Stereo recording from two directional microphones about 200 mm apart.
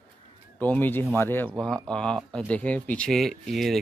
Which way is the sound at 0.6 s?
10° left (ahead or behind).